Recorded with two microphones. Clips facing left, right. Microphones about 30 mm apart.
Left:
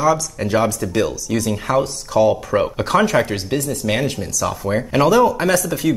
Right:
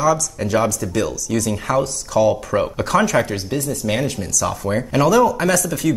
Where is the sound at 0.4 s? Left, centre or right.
Centre.